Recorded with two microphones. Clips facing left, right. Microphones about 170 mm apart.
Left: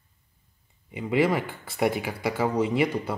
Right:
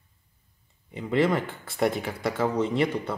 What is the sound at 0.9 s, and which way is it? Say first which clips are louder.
Speech: even; 10° left (ahead or behind).